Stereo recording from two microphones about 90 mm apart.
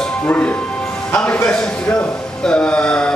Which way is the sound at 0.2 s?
15° left (ahead or behind).